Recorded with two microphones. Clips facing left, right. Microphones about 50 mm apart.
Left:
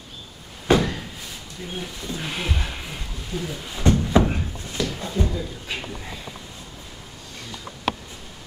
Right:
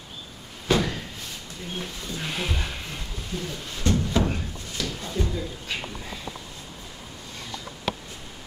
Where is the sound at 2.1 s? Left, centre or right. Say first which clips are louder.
Left 2 dB; centre.